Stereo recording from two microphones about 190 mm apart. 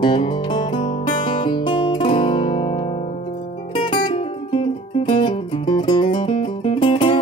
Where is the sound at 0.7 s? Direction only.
40° left (ahead or behind).